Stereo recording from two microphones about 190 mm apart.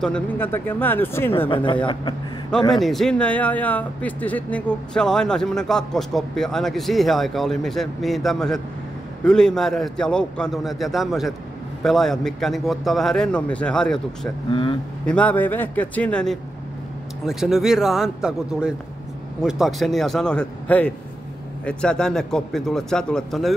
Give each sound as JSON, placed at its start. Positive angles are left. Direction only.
{"t": 0.0, "sound": "speech", "side_deg": 5}
{"t": 1.5, "sound": "speech", "side_deg": 25}
{"t": 2.7, "sound": "speech", "side_deg": 0}
{"t": 14.5, "sound": "speech", "side_deg": 25}
{"t": 15.0, "sound": "speech", "side_deg": 5}